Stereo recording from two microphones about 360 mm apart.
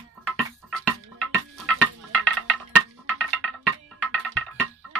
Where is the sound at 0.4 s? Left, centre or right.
Centre.